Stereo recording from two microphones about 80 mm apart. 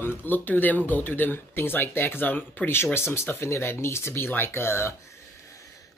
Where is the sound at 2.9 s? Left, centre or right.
Left.